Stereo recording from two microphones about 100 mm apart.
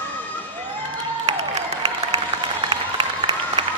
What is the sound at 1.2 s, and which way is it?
Applause, 90° right.